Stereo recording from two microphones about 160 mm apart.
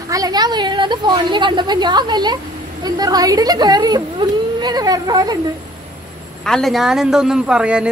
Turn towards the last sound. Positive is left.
turn(degrees=-5)  # may be behind; listen again after turning